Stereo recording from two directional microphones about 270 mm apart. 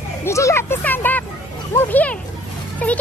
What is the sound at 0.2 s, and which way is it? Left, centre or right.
Speech, centre.